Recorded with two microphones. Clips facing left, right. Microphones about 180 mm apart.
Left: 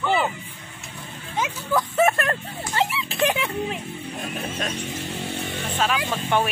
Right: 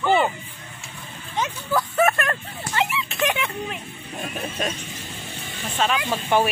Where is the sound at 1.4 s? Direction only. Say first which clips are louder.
Even; 5° left (ahead or behind).